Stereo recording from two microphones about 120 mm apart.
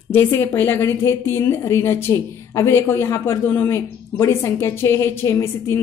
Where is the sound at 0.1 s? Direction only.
20° left (ahead or behind).